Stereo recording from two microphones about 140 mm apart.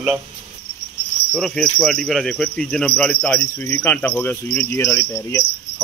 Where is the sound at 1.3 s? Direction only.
5° left (ahead or behind); by 5.4 s 20° left (ahead or behind).